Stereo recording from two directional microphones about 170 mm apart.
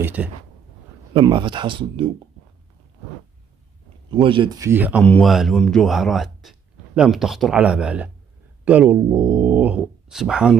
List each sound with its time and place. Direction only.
0.0 s speech: 10° right (ahead or behind)
1.1 s speech: 30° right (ahead or behind)
4.1 s speech: 30° right (ahead or behind); by 5.0 s 10° right (ahead or behind)
5.0 s speech: 5° left (ahead or behind)